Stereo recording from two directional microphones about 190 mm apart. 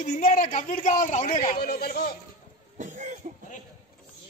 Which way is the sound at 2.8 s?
40° right (ahead or behind).